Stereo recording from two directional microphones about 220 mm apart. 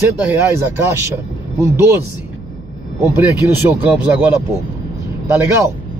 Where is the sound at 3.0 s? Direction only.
10° right (ahead or behind).